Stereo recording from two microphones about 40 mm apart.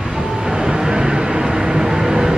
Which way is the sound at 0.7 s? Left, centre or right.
Centre.